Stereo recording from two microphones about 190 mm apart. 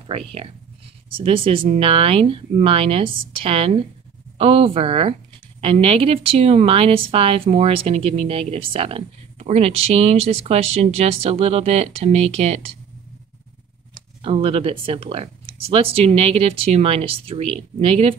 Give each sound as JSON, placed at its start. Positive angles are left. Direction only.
{"t": 1.1, "sound": "a woman's voice", "side_deg": -30}
{"t": 14.2, "sound": "a woman's voice", "side_deg": -30}